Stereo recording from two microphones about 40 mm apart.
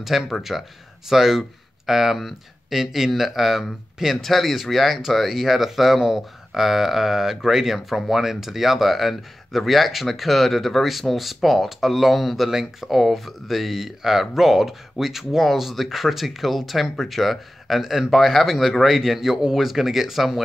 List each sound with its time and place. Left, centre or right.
0.0 s speech: centre